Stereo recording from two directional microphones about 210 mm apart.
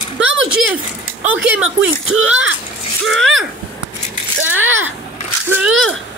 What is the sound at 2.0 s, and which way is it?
Speech, 70° right (ahead or behind).